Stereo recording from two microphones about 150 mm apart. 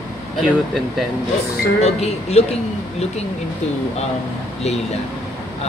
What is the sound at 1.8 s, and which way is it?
Speech, 45° left (ahead or behind).